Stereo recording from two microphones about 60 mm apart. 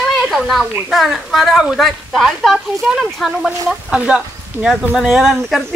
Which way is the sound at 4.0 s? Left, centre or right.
Right.